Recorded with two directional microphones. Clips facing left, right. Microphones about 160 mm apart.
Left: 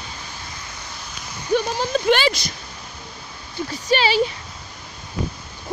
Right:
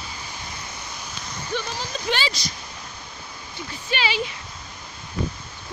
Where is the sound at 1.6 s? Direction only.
55° left (ahead or behind).